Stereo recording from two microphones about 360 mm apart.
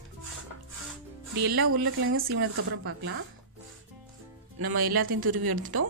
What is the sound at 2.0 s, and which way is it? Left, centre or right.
Speech, right.